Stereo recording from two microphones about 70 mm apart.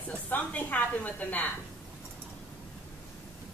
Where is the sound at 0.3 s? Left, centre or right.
Left.